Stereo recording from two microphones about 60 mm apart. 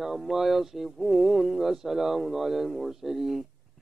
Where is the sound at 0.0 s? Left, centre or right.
Centre.